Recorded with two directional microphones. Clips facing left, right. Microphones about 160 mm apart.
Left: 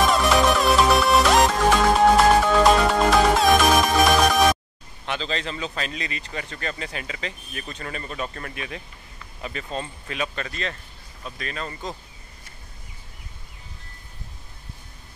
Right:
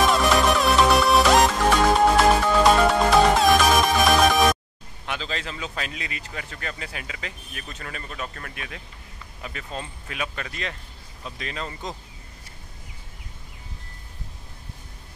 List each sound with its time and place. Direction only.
0.0 s music: centre (ahead or behind)
5.0 s speech: 5° right (ahead or behind)